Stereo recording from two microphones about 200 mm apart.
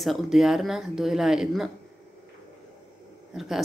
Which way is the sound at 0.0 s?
Centre (ahead or behind).